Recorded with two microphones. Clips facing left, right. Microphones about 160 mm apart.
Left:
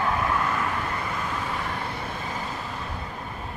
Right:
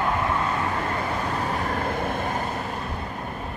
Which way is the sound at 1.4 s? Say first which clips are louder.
Right 5 dB; 40° right (ahead or behind).